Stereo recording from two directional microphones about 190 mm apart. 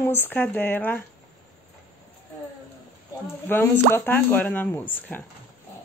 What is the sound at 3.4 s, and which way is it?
Speech, 10° left (ahead or behind).